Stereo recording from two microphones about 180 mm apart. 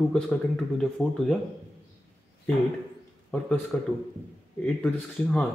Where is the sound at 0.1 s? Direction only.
Centre (ahead or behind).